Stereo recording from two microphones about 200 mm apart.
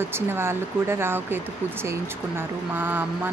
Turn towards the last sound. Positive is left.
turn(degrees=-10)  # may be behind; listen again after turning